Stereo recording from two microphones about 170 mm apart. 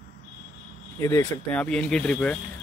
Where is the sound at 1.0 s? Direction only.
20° left (ahead or behind).